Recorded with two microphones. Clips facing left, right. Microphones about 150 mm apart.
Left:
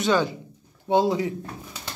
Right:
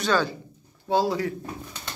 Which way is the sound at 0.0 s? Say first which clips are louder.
Left 2 dB; 20° left (ahead or behind).